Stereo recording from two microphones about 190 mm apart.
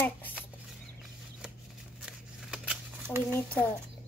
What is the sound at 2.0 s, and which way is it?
Shuffling cards, 5° right (ahead or behind).